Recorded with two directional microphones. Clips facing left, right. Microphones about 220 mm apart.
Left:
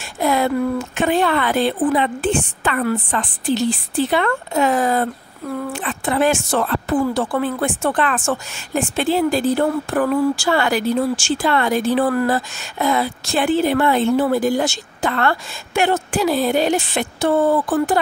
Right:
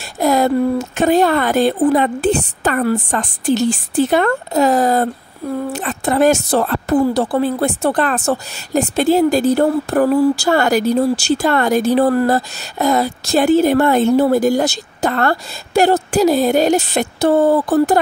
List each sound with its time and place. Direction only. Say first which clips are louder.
0.2 s speech: right 4 dB; 40° right (ahead or behind)